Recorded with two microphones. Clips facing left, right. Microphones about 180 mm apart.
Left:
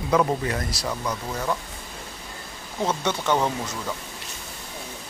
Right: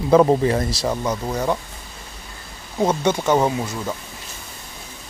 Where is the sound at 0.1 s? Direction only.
35° right (ahead or behind).